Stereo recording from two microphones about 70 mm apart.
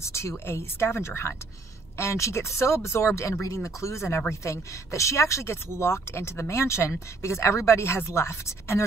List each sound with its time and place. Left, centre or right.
0.0 s speech: left